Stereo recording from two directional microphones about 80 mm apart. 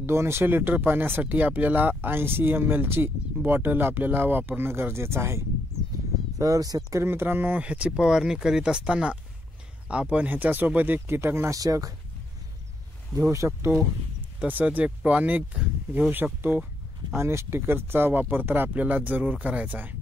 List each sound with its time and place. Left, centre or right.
0.0 s speech: right
6.3 s speech: right
7.1 s speech: right
11.6 s speech: right
13.1 s speech: centre
13.6 s speech: right
14.5 s speech: right
17.1 s speech: right